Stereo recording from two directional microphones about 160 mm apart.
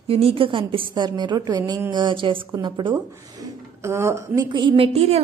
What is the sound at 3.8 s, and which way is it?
A woman's voice, 15° right (ahead or behind).